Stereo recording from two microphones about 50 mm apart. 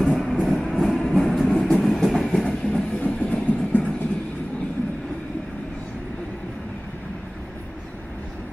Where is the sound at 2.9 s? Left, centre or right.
Left.